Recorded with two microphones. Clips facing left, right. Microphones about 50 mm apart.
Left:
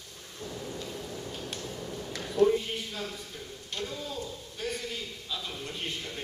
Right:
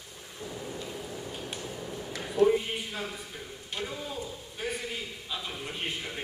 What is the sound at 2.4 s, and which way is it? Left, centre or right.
A man's voice, right.